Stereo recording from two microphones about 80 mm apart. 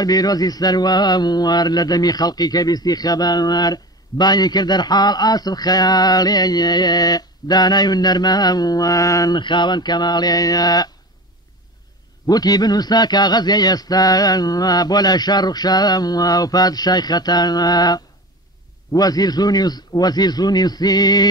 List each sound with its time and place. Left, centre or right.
0.0 s speech: left
9.3 s speech: left
12.3 s speech: left